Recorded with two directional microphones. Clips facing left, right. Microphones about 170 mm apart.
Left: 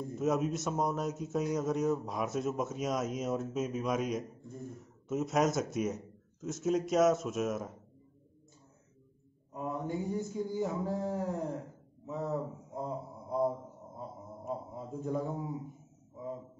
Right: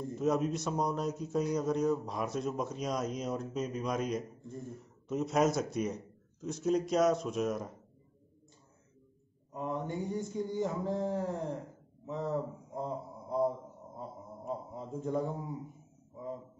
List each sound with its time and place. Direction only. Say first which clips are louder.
0.1 s speech: even; centre (ahead or behind)
9.5 s speech: even; 5° left (ahead or behind)
12.1 s a sound: right 1 dB; 5° left (ahead or behind)